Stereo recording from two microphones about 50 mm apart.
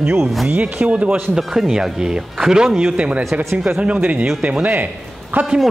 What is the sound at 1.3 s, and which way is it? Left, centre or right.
Speech, centre.